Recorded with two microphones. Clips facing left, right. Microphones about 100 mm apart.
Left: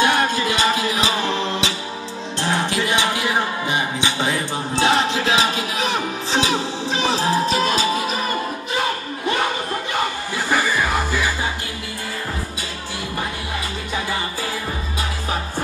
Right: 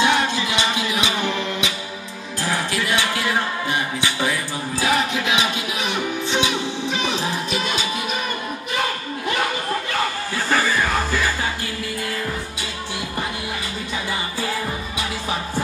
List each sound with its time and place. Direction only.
0.0 s music: 50° left (ahead or behind)
10.3 s music: 10° left (ahead or behind)